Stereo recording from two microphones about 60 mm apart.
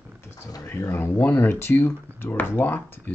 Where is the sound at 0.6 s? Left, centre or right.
Left.